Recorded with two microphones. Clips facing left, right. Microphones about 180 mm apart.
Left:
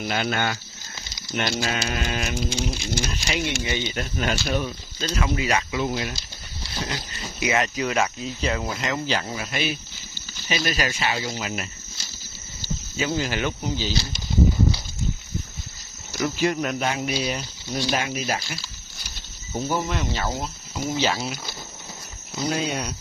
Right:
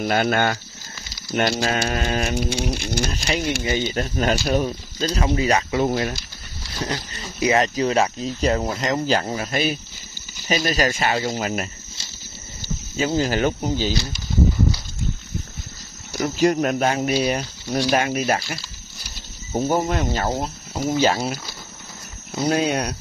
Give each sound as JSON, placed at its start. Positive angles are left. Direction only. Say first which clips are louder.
{"t": 0.0, "sound": "speech", "louder": "right 5 dB", "side_deg": -45}
{"t": 2.4, "sound": "a sound", "louder": "right 3 dB", "side_deg": -60}
{"t": 3.1, "sound": "speech", "louder": "right 3 dB", "side_deg": -45}
{"t": 12.9, "sound": "speech", "louder": "right 5 dB", "side_deg": -40}
{"t": 16.2, "sound": "speech", "louder": "right 4 dB", "side_deg": -40}
{"t": 19.5, "sound": "speech", "louder": "right 5 dB", "side_deg": -45}
{"t": 22.5, "sound": "a sound", "louder": "right 6 dB", "side_deg": -55}